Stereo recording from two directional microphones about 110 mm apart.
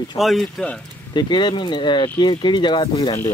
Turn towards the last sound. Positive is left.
turn(degrees=45)  # may be behind; listen again after turning